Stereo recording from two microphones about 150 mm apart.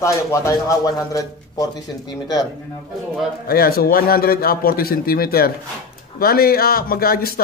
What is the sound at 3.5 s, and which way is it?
A man's voice, 90° left.